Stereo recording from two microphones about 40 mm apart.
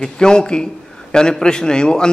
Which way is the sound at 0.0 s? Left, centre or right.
Centre.